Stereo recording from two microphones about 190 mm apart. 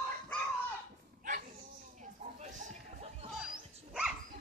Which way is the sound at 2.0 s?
40° right (ahead or behind).